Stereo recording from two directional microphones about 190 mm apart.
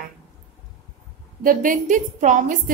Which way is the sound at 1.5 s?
45° right (ahead or behind).